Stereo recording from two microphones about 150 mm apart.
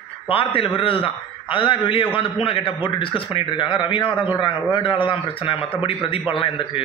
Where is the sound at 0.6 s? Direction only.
35° left (ahead or behind).